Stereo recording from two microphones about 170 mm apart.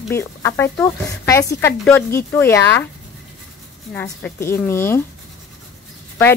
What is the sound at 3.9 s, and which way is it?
Speech, 10° left (ahead or behind).